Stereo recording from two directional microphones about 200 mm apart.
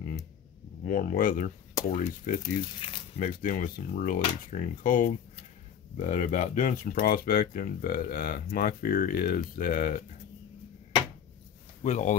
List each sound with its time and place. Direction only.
0.8 s speech: 40° left (ahead or behind)
2.8 s speech: 25° left (ahead or behind)
3.2 s speech: 45° left (ahead or behind)
11.8 s speech: 35° left (ahead or behind)